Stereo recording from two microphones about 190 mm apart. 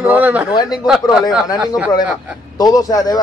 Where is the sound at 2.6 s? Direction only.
20° left (ahead or behind).